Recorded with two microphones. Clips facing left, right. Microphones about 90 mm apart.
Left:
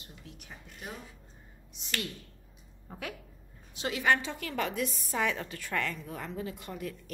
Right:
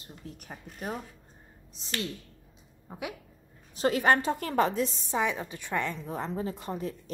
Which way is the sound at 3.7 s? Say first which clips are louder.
Right 4 dB; 40° right (ahead or behind).